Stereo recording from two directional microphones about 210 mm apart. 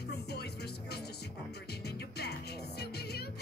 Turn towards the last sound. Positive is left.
turn(degrees=50)  # may be behind; listen again after turning